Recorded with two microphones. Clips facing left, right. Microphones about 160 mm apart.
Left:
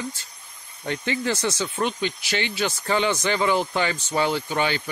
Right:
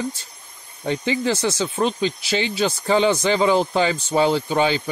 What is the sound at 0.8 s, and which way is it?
Speech, 15° right (ahead or behind).